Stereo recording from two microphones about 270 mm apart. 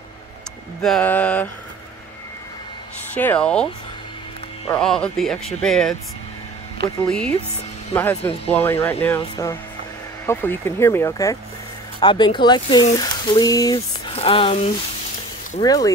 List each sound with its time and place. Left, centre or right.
0.8 s speech: centre
3.2 s speech: centre
4.6 s speech: centre
7.1 s speech: centre; by 14.6 s left
15.6 s speech: centre